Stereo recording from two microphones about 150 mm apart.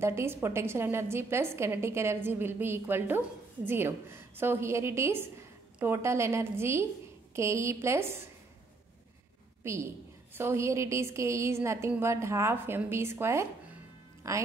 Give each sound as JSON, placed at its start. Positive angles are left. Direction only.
{"t": 0.0, "sound": "a woman's voice", "side_deg": -15}
{"t": 9.6, "sound": "a sound", "side_deg": -20}
{"t": 10.3, "sound": "a woman's voice", "side_deg": -15}